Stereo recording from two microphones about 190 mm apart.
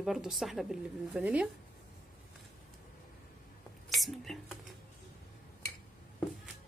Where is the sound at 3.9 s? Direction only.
Centre (ahead or behind).